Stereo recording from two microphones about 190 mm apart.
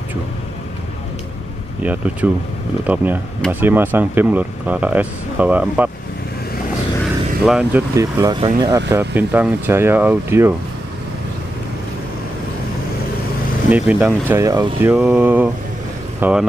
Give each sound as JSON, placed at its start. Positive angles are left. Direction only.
{"t": 1.8, "sound": "speech", "side_deg": -10}
{"t": 7.4, "sound": "speech", "side_deg": -5}
{"t": 7.9, "sound": "speech", "side_deg": -15}
{"t": 8.9, "sound": "speech", "side_deg": -10}
{"t": 13.7, "sound": "speech", "side_deg": -10}